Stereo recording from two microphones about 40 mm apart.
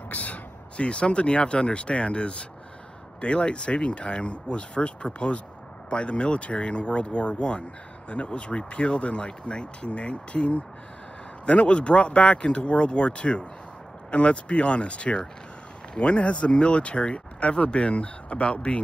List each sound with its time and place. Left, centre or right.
0.1 s speech: left